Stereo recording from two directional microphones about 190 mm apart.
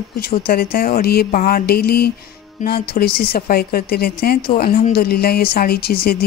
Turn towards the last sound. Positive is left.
turn(degrees=55)  # may be behind; listen again after turning